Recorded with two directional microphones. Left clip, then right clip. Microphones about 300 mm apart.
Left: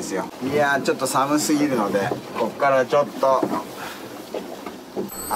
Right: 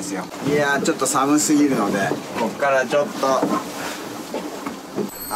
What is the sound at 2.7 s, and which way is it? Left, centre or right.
Speech, centre.